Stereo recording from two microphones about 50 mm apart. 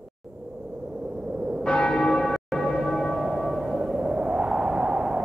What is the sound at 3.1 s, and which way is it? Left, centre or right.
Church bell, centre.